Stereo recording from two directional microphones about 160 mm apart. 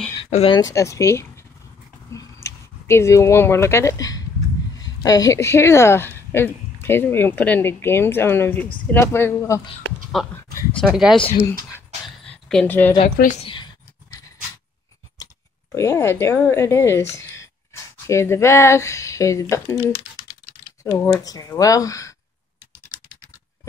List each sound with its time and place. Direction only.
0.2 s speech: 35° left (ahead or behind)
0.6 s speech: 20° left (ahead or behind)
10.9 s speech: 5° right (ahead or behind)
12.2 s a sound: 5° left (ahead or behind)
13.2 s a woman's voice: 50° left (ahead or behind)
15.7 s speech: 20° left (ahead or behind)
21.0 s speech: 20° left (ahead or behind)